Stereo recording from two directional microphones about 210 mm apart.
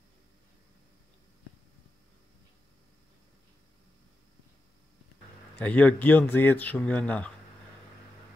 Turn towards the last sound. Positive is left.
turn(degrees=5)  # may be behind; listen again after turning